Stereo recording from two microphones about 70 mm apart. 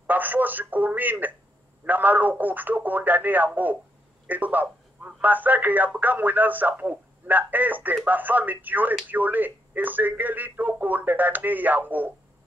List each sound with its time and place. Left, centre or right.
0.0 s speech: right